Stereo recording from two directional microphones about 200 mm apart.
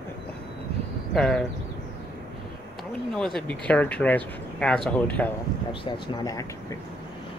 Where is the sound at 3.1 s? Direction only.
5° left (ahead or behind).